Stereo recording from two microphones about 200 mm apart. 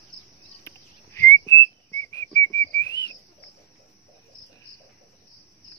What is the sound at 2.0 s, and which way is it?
Cricket, 10° left (ahead or behind).